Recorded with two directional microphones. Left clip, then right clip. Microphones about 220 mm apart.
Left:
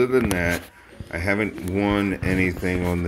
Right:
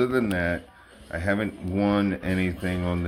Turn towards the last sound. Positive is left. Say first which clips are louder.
# left 5 dB
turn(degrees=0)  # may be behind; listen again after turning